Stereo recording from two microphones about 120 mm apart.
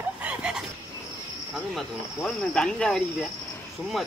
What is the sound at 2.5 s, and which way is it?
Speech, 5° left (ahead or behind).